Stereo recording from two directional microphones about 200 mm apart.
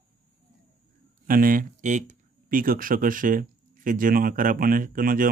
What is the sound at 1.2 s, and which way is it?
Speech, 45° right (ahead or behind).